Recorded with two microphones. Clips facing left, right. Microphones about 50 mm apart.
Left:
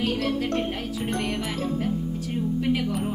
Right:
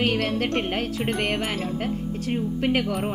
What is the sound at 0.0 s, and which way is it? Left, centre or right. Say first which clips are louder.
Speech: right 2 dB; right.